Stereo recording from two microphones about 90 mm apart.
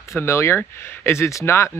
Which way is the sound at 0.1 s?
30° left (ahead or behind).